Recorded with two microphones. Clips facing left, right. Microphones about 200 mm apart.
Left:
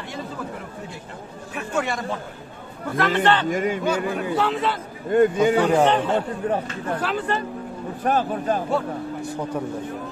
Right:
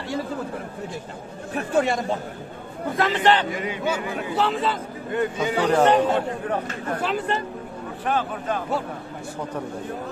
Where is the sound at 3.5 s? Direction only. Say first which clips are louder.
Left 6 dB; 45° left (ahead or behind).